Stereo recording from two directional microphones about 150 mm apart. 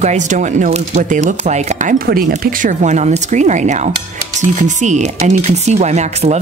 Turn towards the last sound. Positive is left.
turn(degrees=-50)  # may be behind; listen again after turning